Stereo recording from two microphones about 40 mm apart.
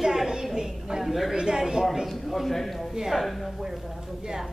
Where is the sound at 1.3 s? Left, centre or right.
Centre.